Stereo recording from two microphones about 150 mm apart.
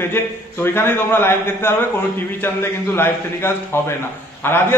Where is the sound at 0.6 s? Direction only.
15° left (ahead or behind).